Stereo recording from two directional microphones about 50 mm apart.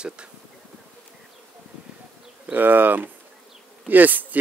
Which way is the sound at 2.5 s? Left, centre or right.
Right.